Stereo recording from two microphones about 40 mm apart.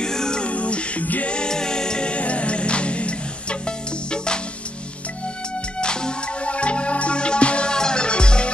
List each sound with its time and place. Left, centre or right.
0.0 s music: centre
0.5 s music: left
1.3 s music: centre
5.8 s music: left